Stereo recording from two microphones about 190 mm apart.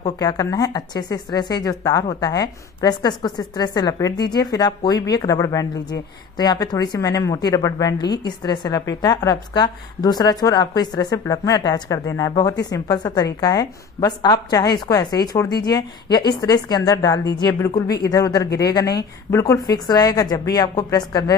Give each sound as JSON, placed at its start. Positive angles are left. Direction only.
{"t": 0.0, "sound": "a woman's voice", "side_deg": 20}